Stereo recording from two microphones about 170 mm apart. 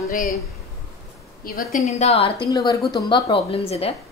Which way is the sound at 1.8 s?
40° left (ahead or behind).